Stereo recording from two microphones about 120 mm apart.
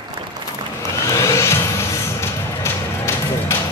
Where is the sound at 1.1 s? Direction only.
25° left (ahead or behind).